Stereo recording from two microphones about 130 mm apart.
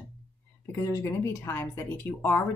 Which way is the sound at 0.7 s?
25° left (ahead or behind).